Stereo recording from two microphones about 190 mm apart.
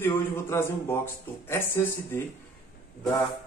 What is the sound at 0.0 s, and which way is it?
Speech, 10° left (ahead or behind).